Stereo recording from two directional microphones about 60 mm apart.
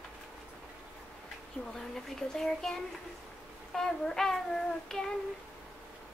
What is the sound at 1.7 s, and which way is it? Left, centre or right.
Child singing, centre.